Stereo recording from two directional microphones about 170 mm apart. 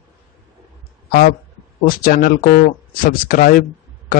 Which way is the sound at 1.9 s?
60° left (ahead or behind).